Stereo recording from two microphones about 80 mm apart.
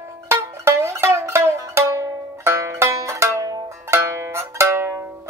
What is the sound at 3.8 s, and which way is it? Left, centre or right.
Zither, right.